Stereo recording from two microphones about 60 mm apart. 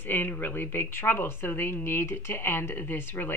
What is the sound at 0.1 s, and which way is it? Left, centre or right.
Speech, left.